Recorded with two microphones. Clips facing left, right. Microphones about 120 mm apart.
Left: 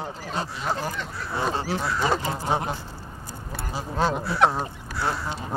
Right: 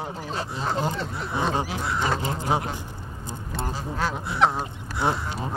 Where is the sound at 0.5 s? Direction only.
25° right (ahead or behind).